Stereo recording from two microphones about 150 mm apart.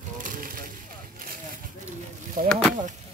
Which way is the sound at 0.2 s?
70° right (ahead or behind).